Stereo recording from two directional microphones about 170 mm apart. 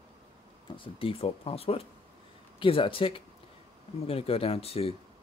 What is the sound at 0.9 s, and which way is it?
Speech, 35° left (ahead or behind).